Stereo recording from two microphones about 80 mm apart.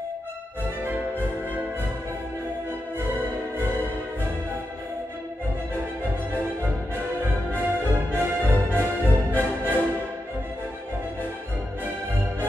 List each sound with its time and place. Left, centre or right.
7.5 s music: right
9.3 s music: left